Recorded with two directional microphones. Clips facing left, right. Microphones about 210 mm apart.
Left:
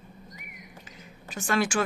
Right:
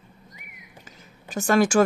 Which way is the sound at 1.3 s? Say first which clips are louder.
Right 7 dB; 45° right (ahead or behind).